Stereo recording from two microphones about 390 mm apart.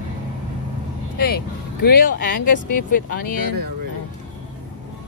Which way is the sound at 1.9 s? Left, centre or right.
Left.